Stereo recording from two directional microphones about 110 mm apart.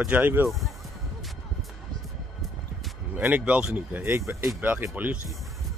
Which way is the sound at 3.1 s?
10° right (ahead or behind).